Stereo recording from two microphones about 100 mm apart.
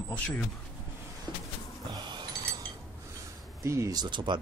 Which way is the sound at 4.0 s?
50° right (ahead or behind).